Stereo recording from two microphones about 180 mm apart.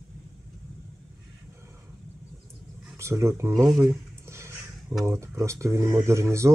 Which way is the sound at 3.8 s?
15° right (ahead or behind).